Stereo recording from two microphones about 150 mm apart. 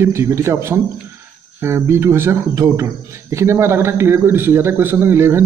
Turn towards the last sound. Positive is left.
turn(degrees=-15)  # may be behind; listen again after turning